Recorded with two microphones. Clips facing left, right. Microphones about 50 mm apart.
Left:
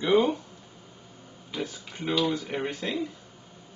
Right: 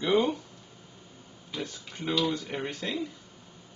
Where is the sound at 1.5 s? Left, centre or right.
Centre.